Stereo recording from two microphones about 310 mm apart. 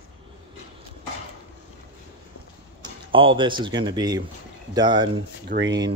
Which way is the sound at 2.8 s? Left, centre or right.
Centre.